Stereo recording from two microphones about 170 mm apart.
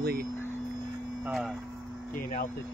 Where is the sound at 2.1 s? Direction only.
55° left (ahead or behind).